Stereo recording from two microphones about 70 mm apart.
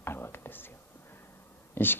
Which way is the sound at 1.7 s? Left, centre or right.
Left.